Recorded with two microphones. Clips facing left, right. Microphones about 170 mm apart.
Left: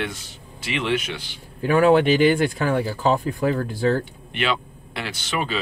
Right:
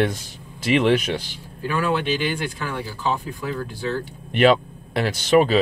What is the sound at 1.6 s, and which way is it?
Speech, 50° left (ahead or behind).